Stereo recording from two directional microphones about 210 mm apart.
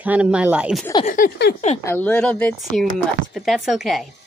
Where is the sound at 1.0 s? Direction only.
40° left (ahead or behind).